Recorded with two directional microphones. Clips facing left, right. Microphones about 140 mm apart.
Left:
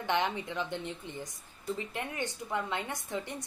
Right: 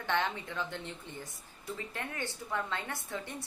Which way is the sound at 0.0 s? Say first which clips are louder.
Left 2 dB; 15° left (ahead or behind).